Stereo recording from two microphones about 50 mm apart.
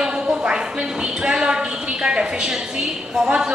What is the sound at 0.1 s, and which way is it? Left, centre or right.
A woman's voice, centre.